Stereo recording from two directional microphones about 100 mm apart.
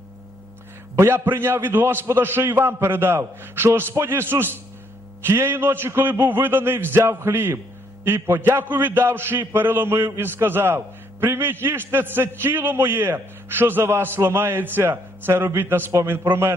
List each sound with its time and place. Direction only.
0.9 s a man's voice: 25° right (ahead or behind)